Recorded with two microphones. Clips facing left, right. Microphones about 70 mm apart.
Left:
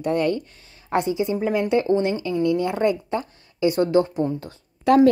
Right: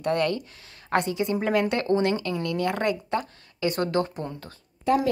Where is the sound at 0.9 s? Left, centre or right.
Right.